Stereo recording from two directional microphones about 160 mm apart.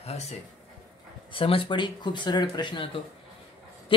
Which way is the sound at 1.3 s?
35° left (ahead or behind).